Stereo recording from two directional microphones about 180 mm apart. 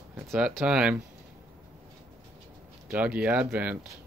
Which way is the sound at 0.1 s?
5° right (ahead or behind).